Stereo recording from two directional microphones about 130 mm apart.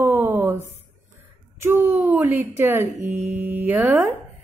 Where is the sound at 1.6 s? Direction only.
20° right (ahead or behind).